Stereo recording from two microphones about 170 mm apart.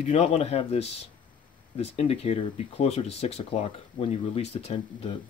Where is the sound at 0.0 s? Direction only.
40° left (ahead or behind).